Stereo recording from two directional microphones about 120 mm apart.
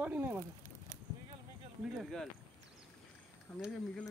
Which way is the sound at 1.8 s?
Centre (ahead or behind).